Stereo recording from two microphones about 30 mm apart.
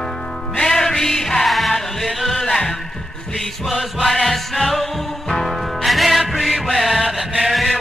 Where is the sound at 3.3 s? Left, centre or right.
Centre.